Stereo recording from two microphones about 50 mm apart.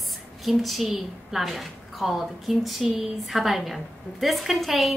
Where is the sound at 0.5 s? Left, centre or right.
Centre.